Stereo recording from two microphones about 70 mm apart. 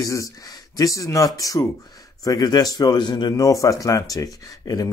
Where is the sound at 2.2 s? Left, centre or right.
Left.